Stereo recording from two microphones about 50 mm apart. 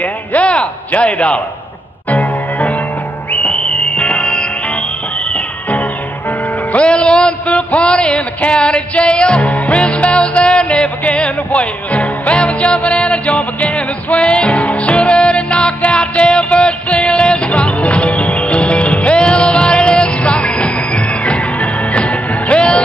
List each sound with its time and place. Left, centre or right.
0.0 s a sound: left
2.0 s music: left
3.3 s whistle: centre
5.3 s music: left